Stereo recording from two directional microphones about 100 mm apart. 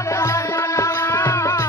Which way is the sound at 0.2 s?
30° left (ahead or behind).